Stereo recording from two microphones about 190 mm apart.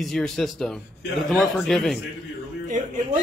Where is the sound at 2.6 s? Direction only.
40° right (ahead or behind).